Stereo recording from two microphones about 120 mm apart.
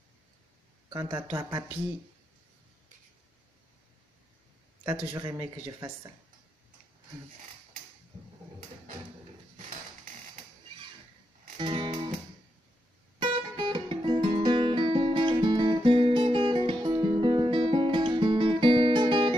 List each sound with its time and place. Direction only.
0.8 s speech: 40° right (ahead or behind)
1.1 s speech: 25° right (ahead or behind)
4.8 s speech: 35° right (ahead or behind)
11.5 s music: 45° right (ahead or behind)
13.2 s guitar: 40° right (ahead or behind)
14.4 s music: 40° right (ahead or behind)